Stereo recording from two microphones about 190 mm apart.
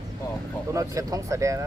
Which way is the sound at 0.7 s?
20° right (ahead or behind).